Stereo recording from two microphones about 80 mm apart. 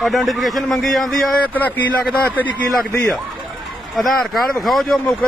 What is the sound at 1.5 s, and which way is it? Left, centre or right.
Speech, left.